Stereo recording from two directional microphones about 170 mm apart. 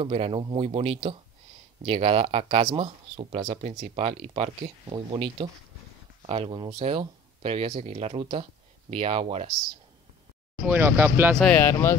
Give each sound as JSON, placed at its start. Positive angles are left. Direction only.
{"t": 0.0, "sound": "speech", "side_deg": -35}
{"t": 10.6, "sound": "speech", "side_deg": -10}
{"t": 11.3, "sound": "speech", "side_deg": 10}